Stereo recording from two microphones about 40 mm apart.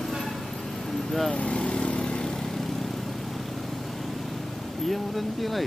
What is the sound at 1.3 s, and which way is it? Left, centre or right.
Vehicle, left.